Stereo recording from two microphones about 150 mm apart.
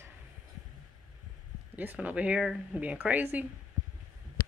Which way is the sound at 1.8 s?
10° right (ahead or behind).